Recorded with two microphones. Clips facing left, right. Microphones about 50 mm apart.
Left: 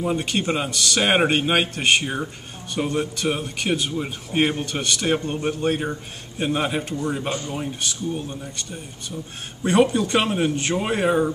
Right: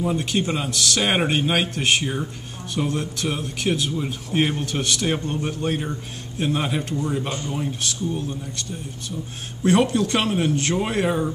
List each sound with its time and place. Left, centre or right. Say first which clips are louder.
0.0 s a man's voice: even; centre
0.7 s speech: even; centre
1.0 s a man's voice: left 3 dB; centre
2.8 s a man's voice: even; left
3.5 s a man's voice: even; centre
4.6 s a man's voice: left 1 dB; centre
9.6 s a man's voice: even; centre